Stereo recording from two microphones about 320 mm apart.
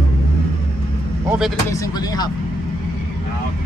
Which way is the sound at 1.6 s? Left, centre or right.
Centre.